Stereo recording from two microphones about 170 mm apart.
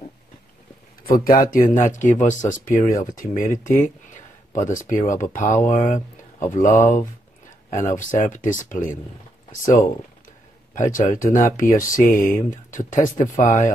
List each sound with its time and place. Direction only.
1.0 s speech: 60° left (ahead or behind)
7.7 s speech: 50° left (ahead or behind)